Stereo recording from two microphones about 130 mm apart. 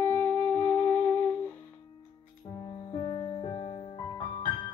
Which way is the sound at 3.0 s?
35° left (ahead or behind).